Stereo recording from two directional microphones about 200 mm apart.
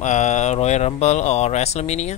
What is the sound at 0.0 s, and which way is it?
Speech, 35° left (ahead or behind).